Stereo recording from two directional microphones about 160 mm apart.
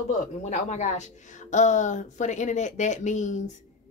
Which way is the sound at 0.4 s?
45° left (ahead or behind).